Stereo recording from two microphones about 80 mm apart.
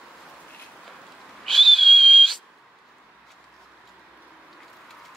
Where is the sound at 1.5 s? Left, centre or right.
Centre.